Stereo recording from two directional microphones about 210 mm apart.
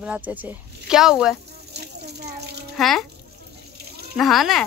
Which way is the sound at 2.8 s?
Centre (ahead or behind).